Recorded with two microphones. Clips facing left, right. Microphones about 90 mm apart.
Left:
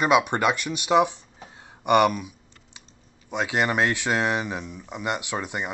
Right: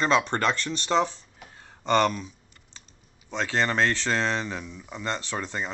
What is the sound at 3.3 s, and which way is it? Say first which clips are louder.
Speech: left 2 dB; 15° left (ahead or behind).